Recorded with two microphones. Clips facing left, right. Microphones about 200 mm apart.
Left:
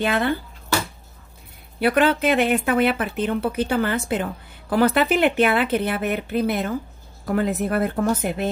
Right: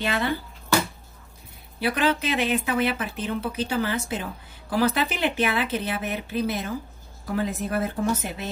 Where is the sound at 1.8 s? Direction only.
55° left (ahead or behind).